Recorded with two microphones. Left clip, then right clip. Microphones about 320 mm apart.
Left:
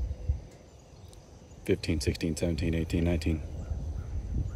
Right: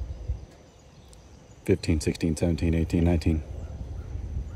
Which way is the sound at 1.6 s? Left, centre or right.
Centre.